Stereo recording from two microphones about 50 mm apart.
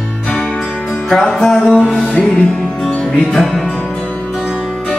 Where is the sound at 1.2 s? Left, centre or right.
Centre.